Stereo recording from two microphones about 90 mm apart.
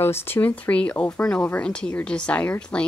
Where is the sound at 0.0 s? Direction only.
25° left (ahead or behind).